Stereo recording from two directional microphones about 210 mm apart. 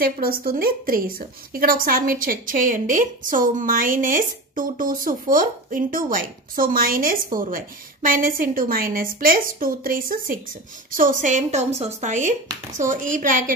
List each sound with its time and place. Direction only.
0.0 s a woman's voice: 45° right (ahead or behind)